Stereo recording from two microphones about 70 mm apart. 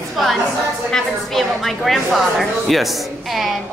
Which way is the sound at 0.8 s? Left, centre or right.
Centre.